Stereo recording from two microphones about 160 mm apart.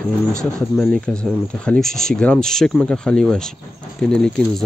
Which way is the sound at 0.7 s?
5° left (ahead or behind).